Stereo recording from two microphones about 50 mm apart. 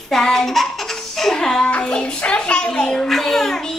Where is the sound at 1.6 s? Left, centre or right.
Left.